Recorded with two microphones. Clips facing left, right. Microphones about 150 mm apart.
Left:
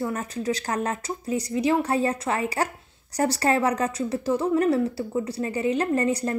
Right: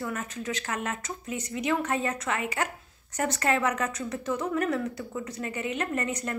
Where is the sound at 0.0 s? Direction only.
35° left (ahead or behind).